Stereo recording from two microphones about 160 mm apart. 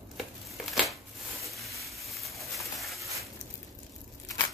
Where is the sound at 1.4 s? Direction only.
Centre (ahead or behind).